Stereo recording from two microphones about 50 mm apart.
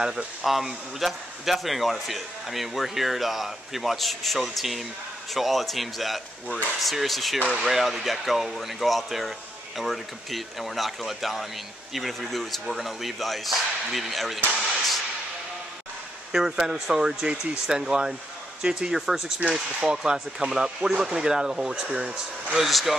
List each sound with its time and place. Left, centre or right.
0.0 s speech: centre
16.3 s speech: centre
22.6 s speech: centre